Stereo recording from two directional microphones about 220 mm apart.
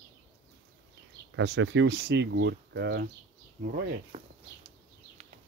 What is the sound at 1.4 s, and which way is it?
Speech, 55° right (ahead or behind).